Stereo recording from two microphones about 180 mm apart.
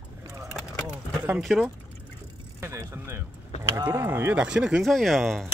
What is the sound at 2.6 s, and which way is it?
Vehicle, 15° right (ahead or behind).